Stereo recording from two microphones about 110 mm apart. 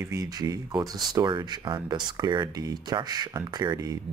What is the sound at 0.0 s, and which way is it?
Speech, 30° right (ahead or behind).